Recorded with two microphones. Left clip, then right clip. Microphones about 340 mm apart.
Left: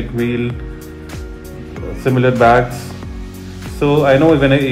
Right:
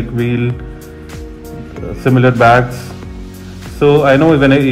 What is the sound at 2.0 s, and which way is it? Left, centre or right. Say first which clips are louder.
Speech: right 3 dB; right.